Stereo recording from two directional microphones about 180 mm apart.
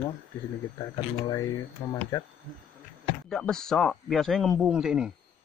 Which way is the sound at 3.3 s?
5° left (ahead or behind).